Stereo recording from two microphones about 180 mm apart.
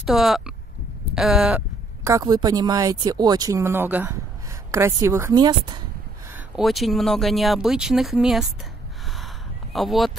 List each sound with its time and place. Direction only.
0.0 s speech: centre (ahead or behind)
2.0 s a woman's voice: 20° right (ahead or behind)
6.3 s speech: centre (ahead or behind)
9.1 s a sound: centre (ahead or behind)